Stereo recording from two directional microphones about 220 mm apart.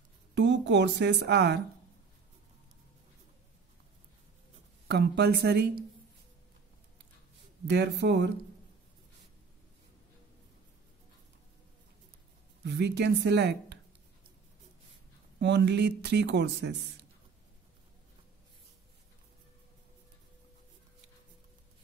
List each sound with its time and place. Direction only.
0.3 s a woman's voice: 55° right (ahead or behind)
4.8 s speech: 50° right (ahead or behind)
7.6 s speech: 50° right (ahead or behind)
12.6 s speech: 50° right (ahead or behind)
15.3 s speech: 50° right (ahead or behind)